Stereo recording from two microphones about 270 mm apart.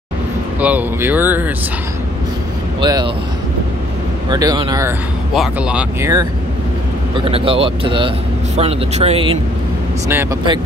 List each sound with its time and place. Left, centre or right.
0.6 s speech: centre
2.8 s speech: centre
4.3 s speech: centre
5.3 s speech: centre
7.2 s speech: centre